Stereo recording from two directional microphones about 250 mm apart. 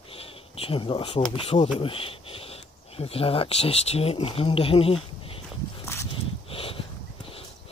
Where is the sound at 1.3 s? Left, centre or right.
Left.